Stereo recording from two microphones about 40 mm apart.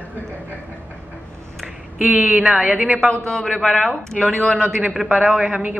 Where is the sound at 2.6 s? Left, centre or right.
Right.